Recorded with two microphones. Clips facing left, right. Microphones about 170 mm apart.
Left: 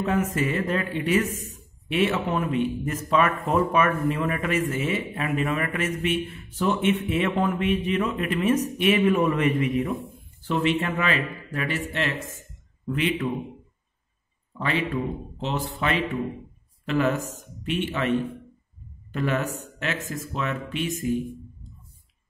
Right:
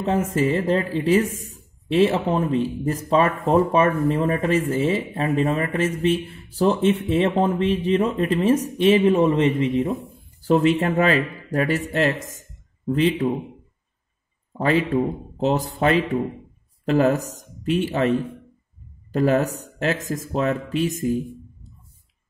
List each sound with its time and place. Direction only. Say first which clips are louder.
0.0 s speech: right 3 dB; 30° right (ahead or behind)
10.4 s speech: right 6 dB; 40° right (ahead or behind)
14.6 s speech: right 7 dB; 40° right (ahead or behind)
19.1 s speech: right 7 dB; 40° right (ahead or behind)